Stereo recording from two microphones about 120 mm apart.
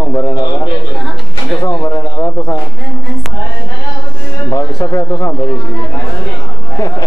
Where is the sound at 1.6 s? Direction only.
30° left (ahead or behind).